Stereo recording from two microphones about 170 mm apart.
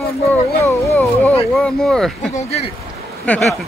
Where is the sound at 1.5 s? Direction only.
5° left (ahead or behind).